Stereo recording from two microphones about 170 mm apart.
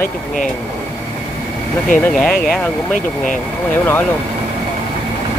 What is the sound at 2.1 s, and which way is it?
Speech, 5° left (ahead or behind).